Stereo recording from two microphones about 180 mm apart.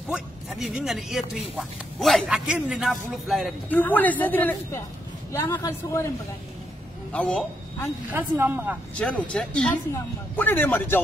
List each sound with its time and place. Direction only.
0.1 s a man's voice: 5° right (ahead or behind)
8.1 s speech: 10° right (ahead or behind)
9.3 s speech: 5° left (ahead or behind)